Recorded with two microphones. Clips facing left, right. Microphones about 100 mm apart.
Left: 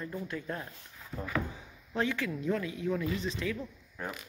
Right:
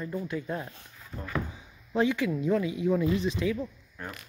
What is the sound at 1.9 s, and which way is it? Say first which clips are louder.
Speech: right 6 dB; 15° right (ahead or behind).